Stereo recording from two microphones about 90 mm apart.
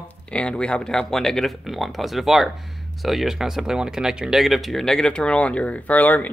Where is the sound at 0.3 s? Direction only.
10° left (ahead or behind).